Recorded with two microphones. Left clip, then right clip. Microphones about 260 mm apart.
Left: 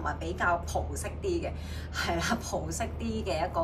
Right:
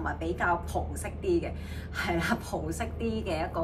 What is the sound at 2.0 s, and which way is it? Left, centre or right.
Speech, centre.